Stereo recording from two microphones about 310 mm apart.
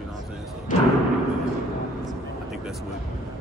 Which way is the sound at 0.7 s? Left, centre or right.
Left.